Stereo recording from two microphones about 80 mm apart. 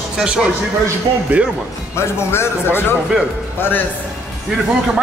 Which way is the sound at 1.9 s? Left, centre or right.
Left.